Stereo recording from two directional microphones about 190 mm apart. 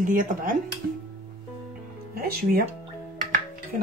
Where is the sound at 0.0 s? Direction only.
45° right (ahead or behind).